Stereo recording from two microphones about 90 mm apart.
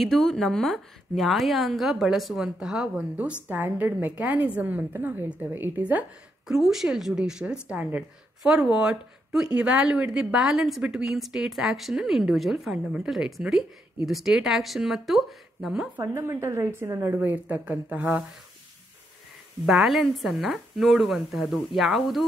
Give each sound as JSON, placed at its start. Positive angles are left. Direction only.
{"t": 0.0, "sound": "a woman's voice", "side_deg": 5}
{"t": 6.4, "sound": "a woman's voice", "side_deg": -5}
{"t": 16.0, "sound": "a woman's voice", "side_deg": -30}
{"t": 17.1, "sound": "a woman's voice", "side_deg": -20}
{"t": 19.6, "sound": "a woman's voice", "side_deg": -5}